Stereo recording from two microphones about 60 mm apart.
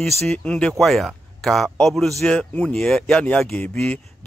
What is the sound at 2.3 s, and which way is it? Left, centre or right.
A man's voice, centre.